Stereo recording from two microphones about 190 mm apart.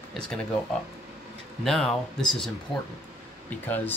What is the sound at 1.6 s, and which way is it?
Speech, 5° left (ahead or behind).